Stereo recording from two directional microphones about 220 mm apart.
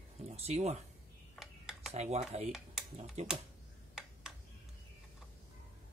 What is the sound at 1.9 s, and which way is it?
Speech, 30° right (ahead or behind).